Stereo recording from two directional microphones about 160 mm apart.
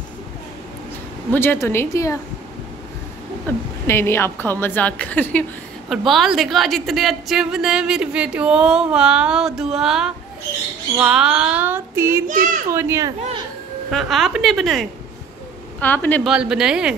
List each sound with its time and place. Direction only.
1.3 s a woman's voice: 15° left (ahead or behind)
3.4 s a woman's voice: 15° left (ahead or behind)
5.9 s a woman's voice: centre (ahead or behind); by 12.3 s 15° right (ahead or behind)
12.3 s a child's voice: 55° right (ahead or behind)
12.7 s a child's voice: 15° right (ahead or behind)
13.8 s a woman's voice: centre (ahead or behind)
15.8 s a woman's voice: 10° left (ahead or behind)
16.3 s a woman's voice: 5° right (ahead or behind)